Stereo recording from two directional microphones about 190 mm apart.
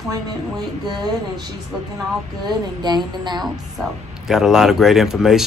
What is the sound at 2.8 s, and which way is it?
Speech, 25° right (ahead or behind).